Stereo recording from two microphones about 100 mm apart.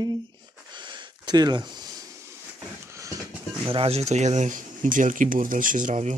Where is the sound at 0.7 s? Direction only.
50° right (ahead or behind).